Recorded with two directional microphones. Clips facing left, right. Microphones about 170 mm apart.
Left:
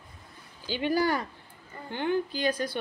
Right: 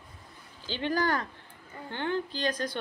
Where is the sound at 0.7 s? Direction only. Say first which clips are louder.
Left 2 dB; 10° left (ahead or behind).